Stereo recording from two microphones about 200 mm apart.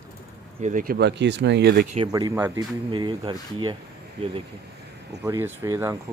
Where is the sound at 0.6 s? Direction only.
40° right (ahead or behind); by 1.9 s 55° right (ahead or behind).